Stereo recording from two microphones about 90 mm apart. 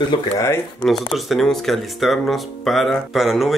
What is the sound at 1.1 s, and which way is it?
Speech, centre (ahead or behind).